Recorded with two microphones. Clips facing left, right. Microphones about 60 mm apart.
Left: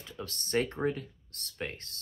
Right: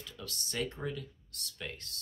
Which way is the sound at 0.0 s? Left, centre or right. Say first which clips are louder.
Left 3 dB; left.